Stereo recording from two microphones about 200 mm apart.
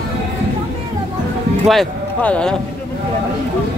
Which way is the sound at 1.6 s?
5° left (ahead or behind).